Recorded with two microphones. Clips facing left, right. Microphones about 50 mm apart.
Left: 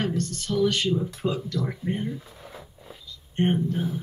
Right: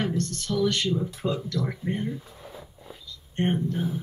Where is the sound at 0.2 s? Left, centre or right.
Left.